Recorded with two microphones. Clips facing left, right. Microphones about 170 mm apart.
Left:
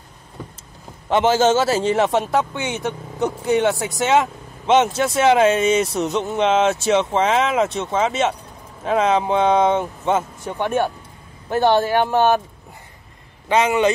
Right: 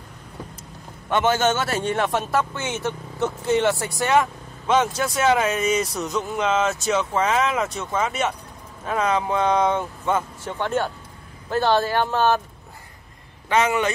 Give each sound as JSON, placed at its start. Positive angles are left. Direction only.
{"t": 1.1, "sound": "a man's voice", "side_deg": 25}
{"t": 13.5, "sound": "a man's voice", "side_deg": 20}